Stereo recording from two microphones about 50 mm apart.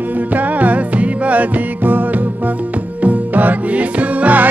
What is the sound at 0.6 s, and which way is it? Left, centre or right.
Music, right.